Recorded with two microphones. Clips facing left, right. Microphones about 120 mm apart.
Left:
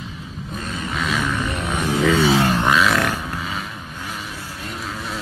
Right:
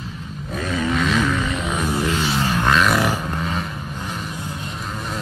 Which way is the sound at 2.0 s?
90° left.